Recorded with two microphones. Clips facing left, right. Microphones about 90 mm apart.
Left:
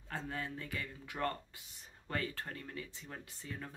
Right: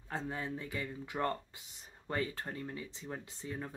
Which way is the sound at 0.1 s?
20° right (ahead or behind).